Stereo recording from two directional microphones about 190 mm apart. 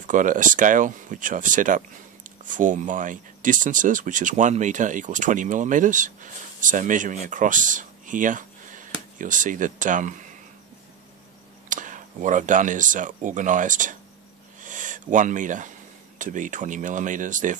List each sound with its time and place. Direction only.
0.0 s speech: 45° right (ahead or behind)
11.7 s speech: 40° right (ahead or behind)
14.6 s owl: 40° right (ahead or behind)
16.2 s speech: 40° right (ahead or behind)